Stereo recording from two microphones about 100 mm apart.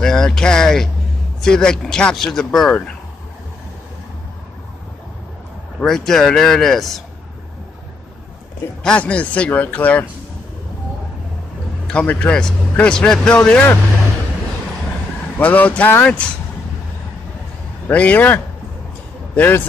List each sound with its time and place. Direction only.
0.0 s speech: 5° left (ahead or behind)
5.8 s speech: 5° left (ahead or behind)
8.8 s a man's voice: 10° left (ahead or behind)
11.9 s a man's voice: 10° left (ahead or behind)
15.3 s a man's voice: 20° left (ahead or behind)
17.8 s a man's voice: 15° left (ahead or behind)